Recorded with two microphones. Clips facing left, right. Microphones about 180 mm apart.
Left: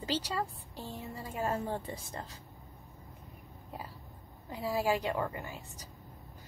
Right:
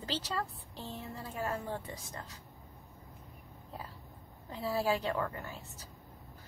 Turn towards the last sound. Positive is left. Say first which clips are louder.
# left 2 dB
turn(degrees=15)  # may be behind; listen again after turning